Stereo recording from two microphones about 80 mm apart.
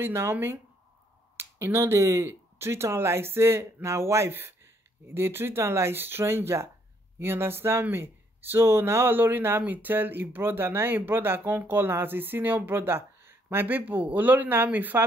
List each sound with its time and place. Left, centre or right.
0.0 s speech: right